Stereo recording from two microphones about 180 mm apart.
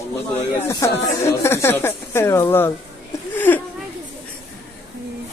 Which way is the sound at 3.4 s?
10° left (ahead or behind).